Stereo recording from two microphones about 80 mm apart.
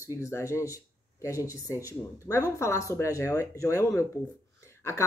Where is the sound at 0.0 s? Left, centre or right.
Left.